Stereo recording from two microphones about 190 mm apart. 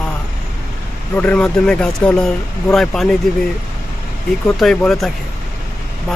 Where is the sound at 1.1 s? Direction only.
5° left (ahead or behind).